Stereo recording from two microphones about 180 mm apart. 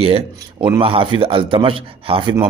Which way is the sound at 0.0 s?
30° right (ahead or behind).